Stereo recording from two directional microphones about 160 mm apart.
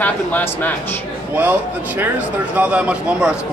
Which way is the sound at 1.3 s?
10° right (ahead or behind).